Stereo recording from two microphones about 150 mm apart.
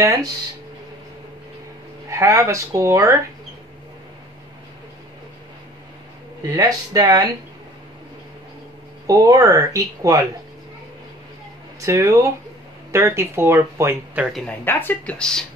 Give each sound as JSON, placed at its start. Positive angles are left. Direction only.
{"t": 2.0, "sound": "speech", "side_deg": -20}
{"t": 6.4, "sound": "speech", "side_deg": -25}
{"t": 9.0, "sound": "speech", "side_deg": -25}
{"t": 11.8, "sound": "speech", "side_deg": -20}
{"t": 14.2, "sound": "speech", "side_deg": 0}
{"t": 14.6, "sound": "speech", "side_deg": 15}